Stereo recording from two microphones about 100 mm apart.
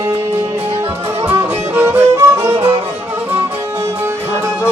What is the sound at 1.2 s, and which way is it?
Music, 20° right (ahead or behind).